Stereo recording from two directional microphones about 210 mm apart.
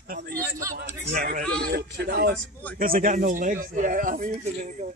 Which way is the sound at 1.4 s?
5° left (ahead or behind).